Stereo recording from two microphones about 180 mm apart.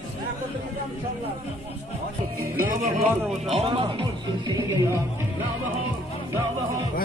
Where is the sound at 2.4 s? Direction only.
55° right (ahead or behind).